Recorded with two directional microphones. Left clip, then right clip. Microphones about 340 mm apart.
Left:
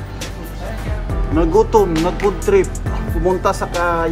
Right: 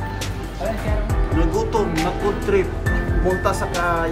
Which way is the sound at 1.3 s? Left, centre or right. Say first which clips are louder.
Left 8 dB; centre.